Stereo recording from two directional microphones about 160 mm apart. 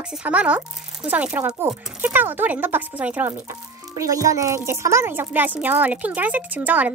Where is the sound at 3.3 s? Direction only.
20° right (ahead or behind).